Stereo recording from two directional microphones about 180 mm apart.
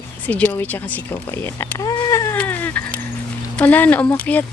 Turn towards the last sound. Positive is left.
turn(degrees=10)  # may be behind; listen again after turning